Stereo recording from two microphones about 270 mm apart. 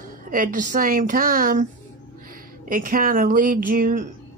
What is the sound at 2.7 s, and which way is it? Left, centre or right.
Speech, right.